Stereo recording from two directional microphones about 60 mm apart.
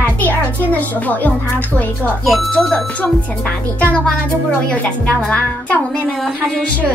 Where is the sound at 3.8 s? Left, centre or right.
Left.